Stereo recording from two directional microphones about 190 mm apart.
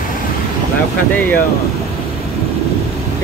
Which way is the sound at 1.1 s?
10° left (ahead or behind).